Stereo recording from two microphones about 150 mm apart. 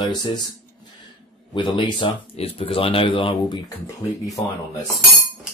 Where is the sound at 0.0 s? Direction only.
30° left (ahead or behind).